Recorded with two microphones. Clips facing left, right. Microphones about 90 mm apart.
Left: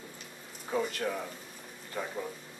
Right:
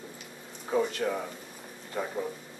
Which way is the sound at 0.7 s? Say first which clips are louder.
Right 4 dB; 15° right (ahead or behind).